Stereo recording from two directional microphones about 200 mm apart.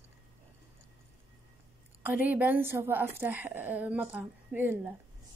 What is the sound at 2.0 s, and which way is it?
A woman's voice, 10° right (ahead or behind).